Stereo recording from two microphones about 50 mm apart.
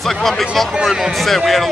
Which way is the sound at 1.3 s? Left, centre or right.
Centre.